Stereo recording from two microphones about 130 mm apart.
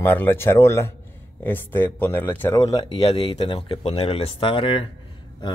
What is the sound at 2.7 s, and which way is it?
Speech, 45° left (ahead or behind).